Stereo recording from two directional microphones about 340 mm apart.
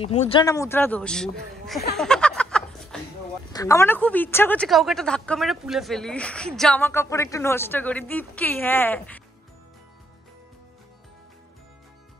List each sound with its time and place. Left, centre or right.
0.0 s speech: centre
2.0 s chuckle: centre
3.5 s a woman's voice: centre